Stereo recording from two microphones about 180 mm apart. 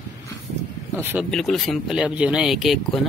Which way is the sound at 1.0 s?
10° right (ahead or behind).